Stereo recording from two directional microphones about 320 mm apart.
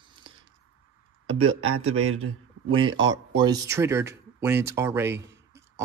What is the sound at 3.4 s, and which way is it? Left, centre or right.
Speech, centre.